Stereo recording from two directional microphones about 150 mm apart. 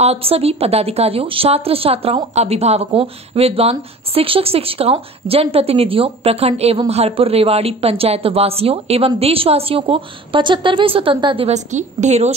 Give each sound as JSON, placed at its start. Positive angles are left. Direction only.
{"t": 0.0, "sound": "a woman's voice", "side_deg": -40}